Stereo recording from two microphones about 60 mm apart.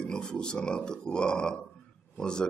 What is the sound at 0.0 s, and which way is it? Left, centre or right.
Speech, centre.